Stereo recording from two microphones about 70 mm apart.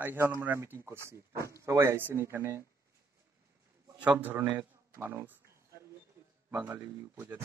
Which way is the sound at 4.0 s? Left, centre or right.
Right.